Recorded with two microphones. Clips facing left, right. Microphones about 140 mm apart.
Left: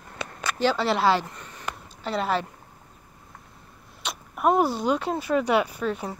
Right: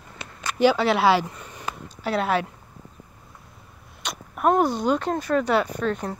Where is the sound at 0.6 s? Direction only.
5° right (ahead or behind).